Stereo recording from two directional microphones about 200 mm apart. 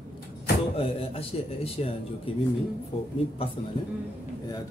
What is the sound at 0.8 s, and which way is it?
A man's voice, 30° left (ahead or behind).